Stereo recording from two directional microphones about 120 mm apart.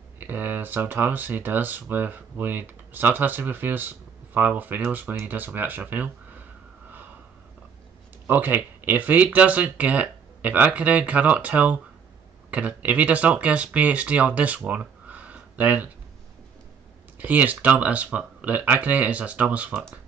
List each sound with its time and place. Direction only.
0.2 s speech: 15° right (ahead or behind)
8.3 s speech: 15° right (ahead or behind)
17.2 s speech: 15° right (ahead or behind)